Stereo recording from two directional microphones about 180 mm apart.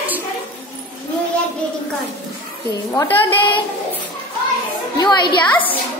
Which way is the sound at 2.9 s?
15° left (ahead or behind).